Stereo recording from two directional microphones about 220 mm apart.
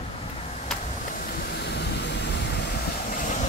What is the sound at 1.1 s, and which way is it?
Vehicle, 40° left (ahead or behind).